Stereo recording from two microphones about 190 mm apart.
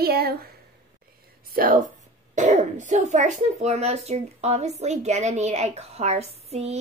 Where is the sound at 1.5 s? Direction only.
50° right (ahead or behind).